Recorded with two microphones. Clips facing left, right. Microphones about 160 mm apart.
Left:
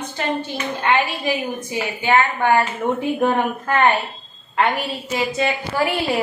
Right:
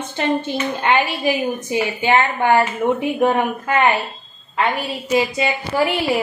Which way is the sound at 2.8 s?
5° right (ahead or behind).